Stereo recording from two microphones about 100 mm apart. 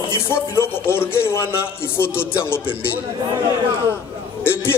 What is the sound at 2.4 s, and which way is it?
Speech, 25° left (ahead or behind).